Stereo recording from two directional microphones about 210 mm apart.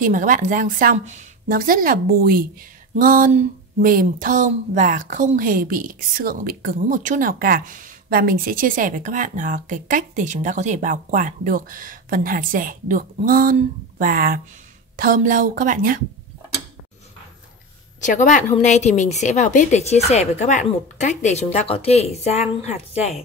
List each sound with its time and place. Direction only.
0.0 s a woman's voice: 40° right (ahead or behind)
18.0 s speech: 35° left (ahead or behind)